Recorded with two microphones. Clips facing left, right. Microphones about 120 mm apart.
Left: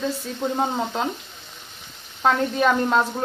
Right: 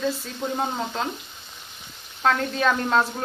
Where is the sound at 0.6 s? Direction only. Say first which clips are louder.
Left 3 dB; 10° left (ahead or behind).